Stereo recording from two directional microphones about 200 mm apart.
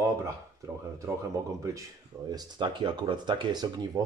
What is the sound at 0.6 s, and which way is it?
Speech, 15° right (ahead or behind).